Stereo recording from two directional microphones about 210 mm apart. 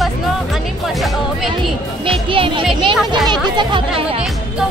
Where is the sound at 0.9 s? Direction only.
Centre (ahead or behind).